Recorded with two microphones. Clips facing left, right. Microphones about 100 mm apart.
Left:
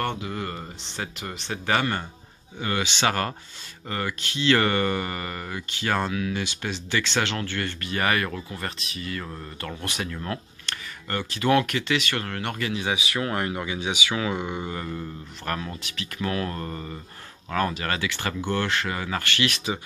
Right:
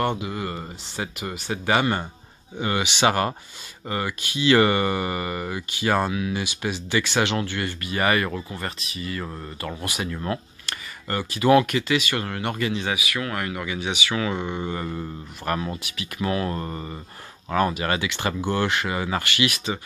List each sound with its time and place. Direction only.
0.0 s speech: 15° right (ahead or behind)
12.9 s speech: 30° left (ahead or behind); by 14.7 s 10° left (ahead or behind)
14.7 s speech: 10° right (ahead or behind)